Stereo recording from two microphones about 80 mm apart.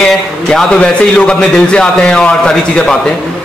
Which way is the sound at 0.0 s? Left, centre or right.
Centre.